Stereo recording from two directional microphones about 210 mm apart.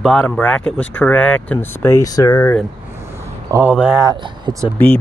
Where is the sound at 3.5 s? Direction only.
10° right (ahead or behind).